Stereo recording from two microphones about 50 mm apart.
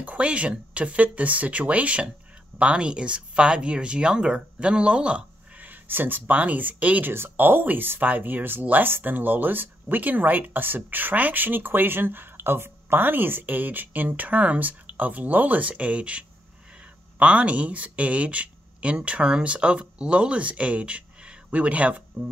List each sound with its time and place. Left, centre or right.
0.0 s speech: right
5.7 s speech: right
7.1 s speech: right